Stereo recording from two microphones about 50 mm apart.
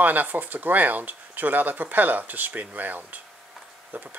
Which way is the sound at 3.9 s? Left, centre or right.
Right.